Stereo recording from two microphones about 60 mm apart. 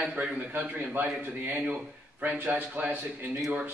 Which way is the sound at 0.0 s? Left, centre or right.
Centre.